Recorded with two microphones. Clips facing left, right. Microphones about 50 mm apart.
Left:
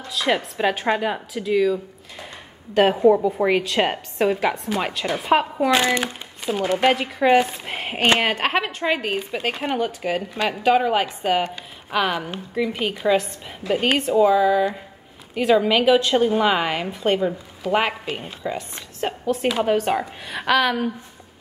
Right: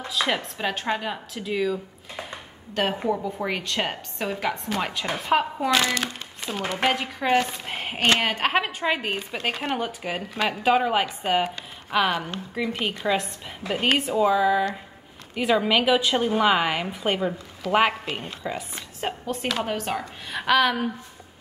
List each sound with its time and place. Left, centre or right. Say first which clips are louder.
0.1 s a woman's voice: left 4 dB; centre
1.3 s a woman's voice: left 6 dB; centre
2.7 s a woman's voice: left 9 dB; centre
5.7 s speech: left 4 dB; left
6.7 s a woman's voice: left 5 dB; centre
19.4 s a woman's voice: left 7 dB; centre